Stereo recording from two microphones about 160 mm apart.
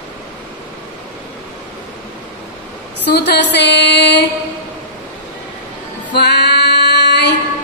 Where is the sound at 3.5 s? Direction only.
90° left.